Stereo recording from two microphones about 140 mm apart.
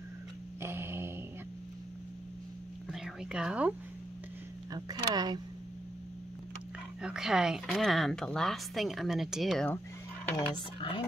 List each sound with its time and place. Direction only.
0.6 s a sound: 15° right (ahead or behind)
2.9 s speech: 5° right (ahead or behind)
4.7 s speech: 30° right (ahead or behind)
7.0 s a woman's voice: 5° right (ahead or behind)
10.4 s speech: 35° left (ahead or behind)